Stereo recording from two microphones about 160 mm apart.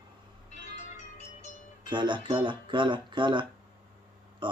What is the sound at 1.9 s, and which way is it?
Speech, 30° right (ahead or behind).